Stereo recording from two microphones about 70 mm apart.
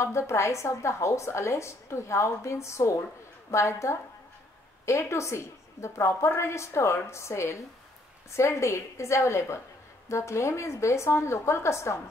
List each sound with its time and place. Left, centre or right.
0.0 s speech: left